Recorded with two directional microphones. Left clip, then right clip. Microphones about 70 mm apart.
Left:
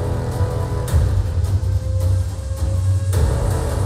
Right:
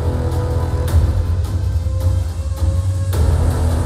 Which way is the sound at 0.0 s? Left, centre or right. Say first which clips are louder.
Right 2 dB; centre.